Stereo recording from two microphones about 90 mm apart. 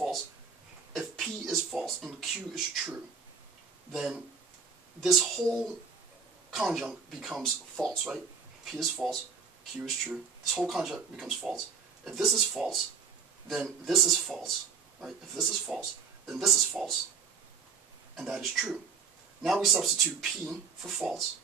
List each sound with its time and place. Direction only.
0.9 s speech: centre (ahead or behind)
3.9 s speech: centre (ahead or behind)
6.5 s speech: 5° right (ahead or behind)
18.1 s speech: centre (ahead or behind)